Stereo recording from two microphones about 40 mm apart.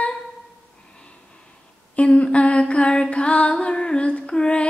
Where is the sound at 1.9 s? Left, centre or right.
Left.